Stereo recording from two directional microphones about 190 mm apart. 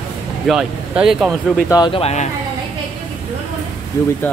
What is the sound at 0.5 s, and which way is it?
Speech, 5° right (ahead or behind).